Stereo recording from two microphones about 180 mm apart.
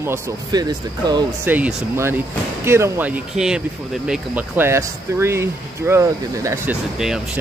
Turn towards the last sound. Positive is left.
turn(degrees=-5)  # may be behind; listen again after turning